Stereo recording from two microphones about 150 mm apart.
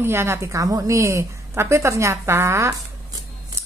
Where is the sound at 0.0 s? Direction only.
15° right (ahead or behind).